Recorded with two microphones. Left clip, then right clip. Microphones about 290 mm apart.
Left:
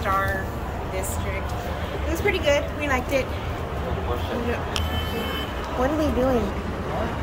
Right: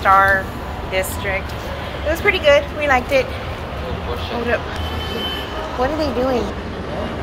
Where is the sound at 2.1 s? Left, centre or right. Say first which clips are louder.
Right 8 dB; centre.